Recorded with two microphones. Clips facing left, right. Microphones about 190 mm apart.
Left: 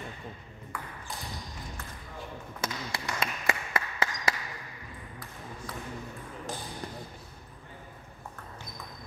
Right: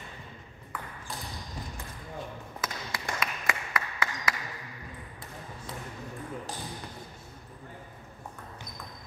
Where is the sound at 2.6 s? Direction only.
25° left (ahead or behind).